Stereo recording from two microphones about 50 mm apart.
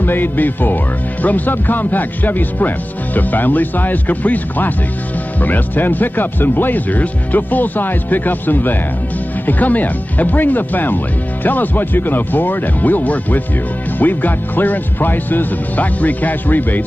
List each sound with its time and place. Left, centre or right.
0.0 s speech: left